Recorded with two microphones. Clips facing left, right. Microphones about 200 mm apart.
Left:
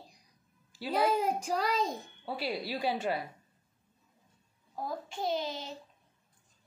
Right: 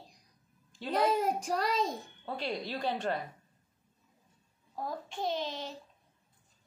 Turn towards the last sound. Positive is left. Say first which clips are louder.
# left 1 dB
turn(degrees=5)  # may be behind; listen again after turning